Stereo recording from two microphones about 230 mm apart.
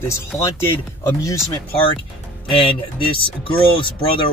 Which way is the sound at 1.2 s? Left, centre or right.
Centre.